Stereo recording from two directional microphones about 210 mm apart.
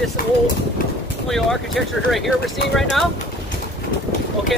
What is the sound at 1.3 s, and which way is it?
Speech, centre (ahead or behind).